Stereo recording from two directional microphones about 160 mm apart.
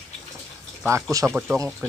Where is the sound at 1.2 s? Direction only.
5° right (ahead or behind).